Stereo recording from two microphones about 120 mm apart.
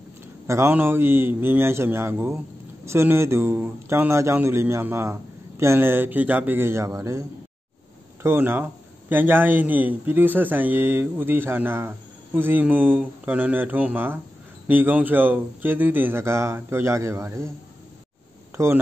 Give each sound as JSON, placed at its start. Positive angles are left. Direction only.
{"t": 0.5, "sound": "a man's voice", "side_deg": -20}
{"t": 18.6, "sound": "a man's voice", "side_deg": -25}